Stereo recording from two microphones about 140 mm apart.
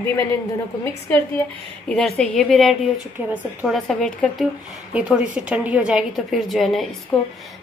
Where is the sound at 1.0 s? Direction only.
15° left (ahead or behind).